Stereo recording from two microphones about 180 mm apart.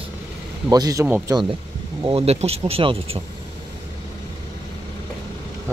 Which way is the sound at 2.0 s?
30° right (ahead or behind).